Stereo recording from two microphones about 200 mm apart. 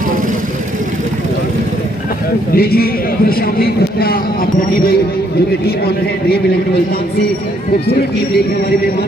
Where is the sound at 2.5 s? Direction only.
50° left (ahead or behind).